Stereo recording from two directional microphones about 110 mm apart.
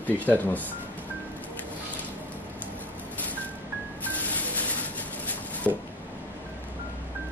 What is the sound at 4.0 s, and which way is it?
Music, 15° left (ahead or behind).